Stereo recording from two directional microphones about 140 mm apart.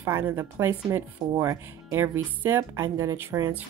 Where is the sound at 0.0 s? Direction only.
15° right (ahead or behind).